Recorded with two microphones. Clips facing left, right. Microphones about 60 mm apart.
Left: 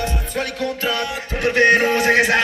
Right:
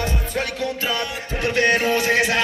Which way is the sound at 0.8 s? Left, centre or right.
Centre.